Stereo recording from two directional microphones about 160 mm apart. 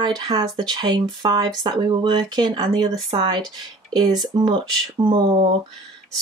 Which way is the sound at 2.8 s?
35° right (ahead or behind).